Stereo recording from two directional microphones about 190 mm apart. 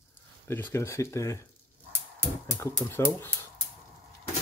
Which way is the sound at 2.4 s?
10° left (ahead or behind).